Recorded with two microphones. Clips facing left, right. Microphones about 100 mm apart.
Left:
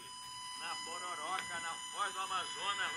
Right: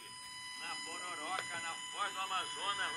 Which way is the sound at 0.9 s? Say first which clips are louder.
Left 1 dB; 25° left (ahead or behind).